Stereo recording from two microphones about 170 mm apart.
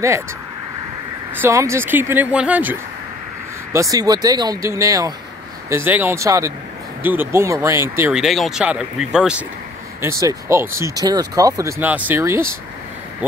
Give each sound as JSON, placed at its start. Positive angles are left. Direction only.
{"t": 1.3, "sound": "speech", "side_deg": -15}
{"t": 3.7, "sound": "speech", "side_deg": -20}
{"t": 8.1, "sound": "speech", "side_deg": 0}
{"t": 10.2, "sound": "speech", "side_deg": -15}
{"t": 11.8, "sound": "speech", "side_deg": -10}